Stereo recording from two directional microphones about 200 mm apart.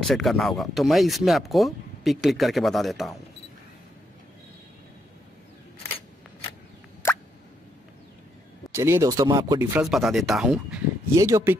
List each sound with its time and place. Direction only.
0.0 s speech: centre (ahead or behind)
7.0 s plop: 10° left (ahead or behind)
8.7 s speech: 15° right (ahead or behind)
9.8 s speech: centre (ahead or behind)
11.1 s speech: 15° right (ahead or behind)